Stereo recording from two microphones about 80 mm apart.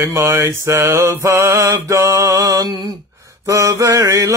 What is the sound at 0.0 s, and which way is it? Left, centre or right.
Mantra, right.